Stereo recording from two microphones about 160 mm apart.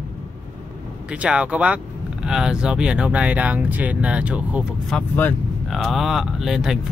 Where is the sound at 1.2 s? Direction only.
5° right (ahead or behind).